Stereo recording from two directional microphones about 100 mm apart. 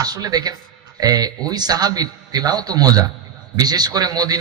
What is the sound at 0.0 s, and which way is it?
A man's voice, 40° right (ahead or behind).